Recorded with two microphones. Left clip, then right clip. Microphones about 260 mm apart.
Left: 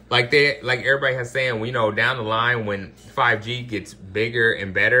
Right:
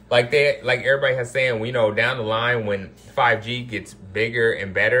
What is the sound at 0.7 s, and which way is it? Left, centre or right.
Speech, centre.